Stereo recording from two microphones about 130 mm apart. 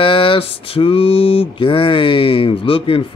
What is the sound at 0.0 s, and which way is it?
Mantra, 40° left (ahead or behind).